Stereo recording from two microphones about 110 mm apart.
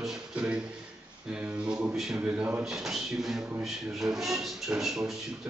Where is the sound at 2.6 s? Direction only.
5° right (ahead or behind).